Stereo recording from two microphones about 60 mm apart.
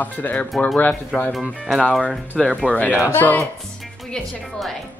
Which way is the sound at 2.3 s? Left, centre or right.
Left.